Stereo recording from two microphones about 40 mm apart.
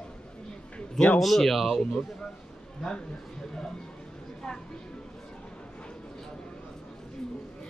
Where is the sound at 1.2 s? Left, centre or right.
Centre.